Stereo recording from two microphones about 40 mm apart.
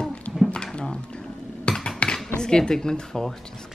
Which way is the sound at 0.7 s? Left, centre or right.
Left.